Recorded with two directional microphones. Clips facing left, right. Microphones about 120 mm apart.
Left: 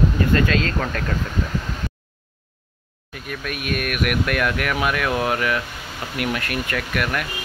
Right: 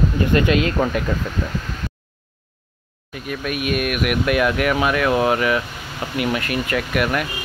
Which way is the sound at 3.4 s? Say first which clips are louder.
Right 4 dB; 5° right (ahead or behind).